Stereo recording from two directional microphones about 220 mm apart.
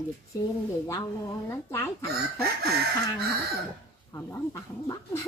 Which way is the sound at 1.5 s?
10° left (ahead or behind).